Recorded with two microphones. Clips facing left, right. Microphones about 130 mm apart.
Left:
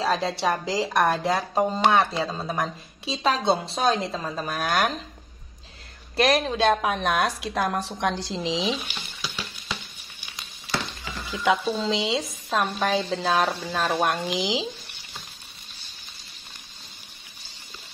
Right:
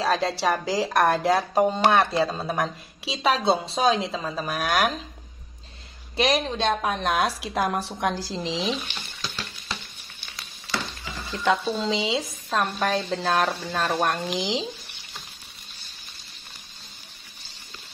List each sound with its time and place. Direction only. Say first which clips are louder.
0.0 s speech: right 1 dB; centre (ahead or behind)
6.1 s speech: left 2 dB; centre (ahead or behind)
11.2 s speech: even; 5° left (ahead or behind)
11.7 s speech: even; centre (ahead or behind)